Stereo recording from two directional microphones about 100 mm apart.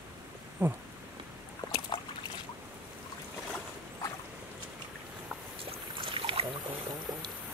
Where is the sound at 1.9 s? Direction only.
55° left (ahead or behind).